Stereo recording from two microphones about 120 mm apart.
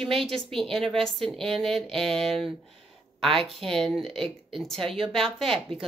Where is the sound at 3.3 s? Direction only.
50° right (ahead or behind).